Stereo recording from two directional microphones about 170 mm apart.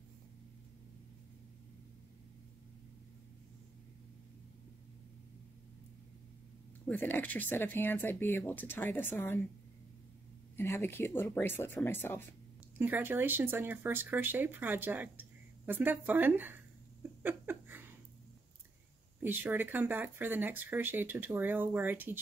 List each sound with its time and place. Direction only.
6.9 s speech: 10° left (ahead or behind)
10.5 s speech: 15° left (ahead or behind)
12.7 s speech: 10° right (ahead or behind)
17.2 s a sound: 10° right (ahead or behind)
19.1 s speech: 10° right (ahead or behind)